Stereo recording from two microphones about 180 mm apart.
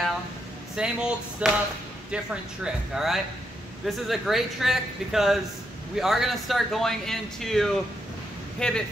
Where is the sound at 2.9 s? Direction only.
Centre (ahead or behind).